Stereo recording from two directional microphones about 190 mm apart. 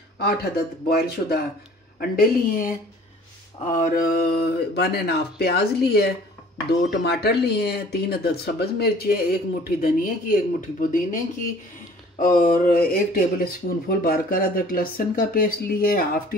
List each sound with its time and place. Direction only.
0.2 s speech: 55° left (ahead or behind)
12.2 s speech: 45° left (ahead or behind)